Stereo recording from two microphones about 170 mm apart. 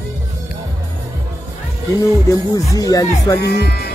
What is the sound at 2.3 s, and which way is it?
Music, 20° left (ahead or behind).